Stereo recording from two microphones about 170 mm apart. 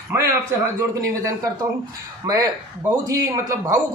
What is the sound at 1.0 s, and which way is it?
Speech, 20° right (ahead or behind).